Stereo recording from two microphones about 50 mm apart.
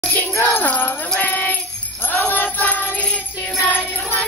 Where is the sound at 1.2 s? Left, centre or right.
Left.